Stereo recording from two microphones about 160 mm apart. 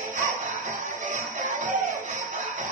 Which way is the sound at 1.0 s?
55° right (ahead or behind).